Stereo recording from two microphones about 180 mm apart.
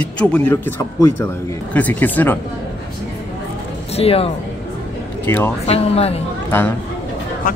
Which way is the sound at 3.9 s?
35° left (ahead or behind).